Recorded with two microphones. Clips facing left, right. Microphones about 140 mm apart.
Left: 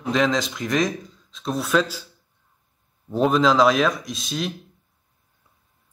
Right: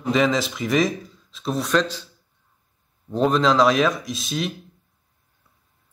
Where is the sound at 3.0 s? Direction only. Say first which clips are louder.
Even; 5° left (ahead or behind).